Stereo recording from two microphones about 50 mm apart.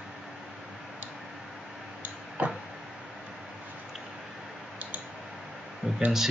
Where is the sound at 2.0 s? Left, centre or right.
Right.